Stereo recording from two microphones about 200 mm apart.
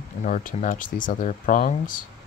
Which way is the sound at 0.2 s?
40° left (ahead or behind).